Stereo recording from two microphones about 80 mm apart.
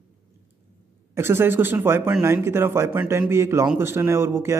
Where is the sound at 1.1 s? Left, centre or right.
Right.